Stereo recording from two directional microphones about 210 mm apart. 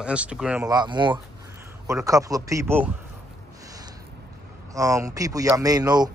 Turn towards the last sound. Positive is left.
turn(degrees=-20)  # may be behind; listen again after turning